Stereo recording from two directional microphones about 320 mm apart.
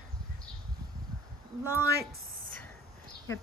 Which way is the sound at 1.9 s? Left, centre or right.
Right.